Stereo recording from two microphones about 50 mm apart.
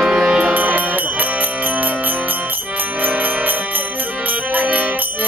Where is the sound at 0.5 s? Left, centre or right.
Right.